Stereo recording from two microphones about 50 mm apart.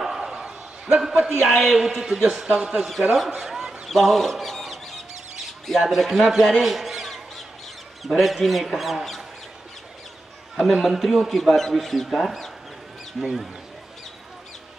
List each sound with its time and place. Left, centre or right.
0.0 s a sound: centre
1.6 s a man's voice: centre
3.2 s fowl: centre
3.9 s a sound: centre
5.8 s a man's voice: centre
10.5 s a man's voice: centre